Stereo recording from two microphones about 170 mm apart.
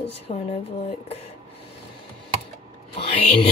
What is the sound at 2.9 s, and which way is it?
Music, 35° left (ahead or behind).